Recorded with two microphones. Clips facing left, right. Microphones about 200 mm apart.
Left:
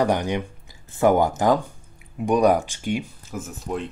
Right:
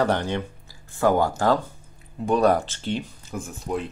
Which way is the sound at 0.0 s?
15° left (ahead or behind).